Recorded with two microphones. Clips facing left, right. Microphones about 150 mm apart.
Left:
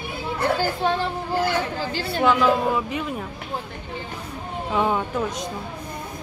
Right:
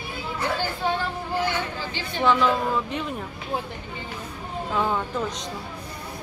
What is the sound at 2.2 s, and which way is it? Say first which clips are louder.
Speech: left 2 dB; 5° left (ahead or behind).